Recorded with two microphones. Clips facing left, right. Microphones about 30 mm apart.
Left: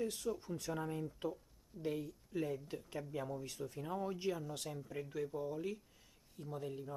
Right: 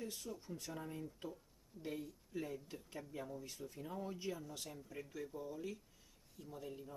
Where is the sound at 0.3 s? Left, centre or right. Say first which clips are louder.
Left 9 dB; left.